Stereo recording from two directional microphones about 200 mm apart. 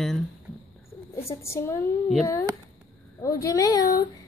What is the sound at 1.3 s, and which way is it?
Speech, 15° left (ahead or behind).